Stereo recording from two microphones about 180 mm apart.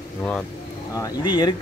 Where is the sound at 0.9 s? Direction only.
20° left (ahead or behind).